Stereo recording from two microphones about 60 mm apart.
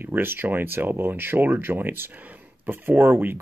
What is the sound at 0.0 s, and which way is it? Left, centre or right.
Speech, right.